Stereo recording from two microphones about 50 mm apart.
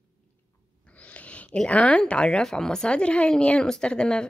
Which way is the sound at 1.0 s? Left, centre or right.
Left.